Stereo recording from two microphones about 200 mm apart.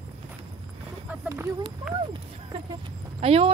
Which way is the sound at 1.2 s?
10° right (ahead or behind).